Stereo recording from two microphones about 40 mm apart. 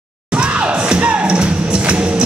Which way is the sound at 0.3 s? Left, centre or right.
Right.